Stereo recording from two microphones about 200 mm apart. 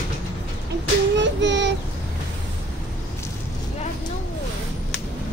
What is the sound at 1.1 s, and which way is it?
Child singing, 65° right (ahead or behind).